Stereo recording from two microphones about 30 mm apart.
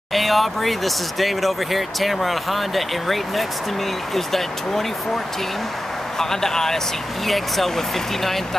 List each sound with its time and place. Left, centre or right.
0.1 s speech: centre
7.2 s speech: centre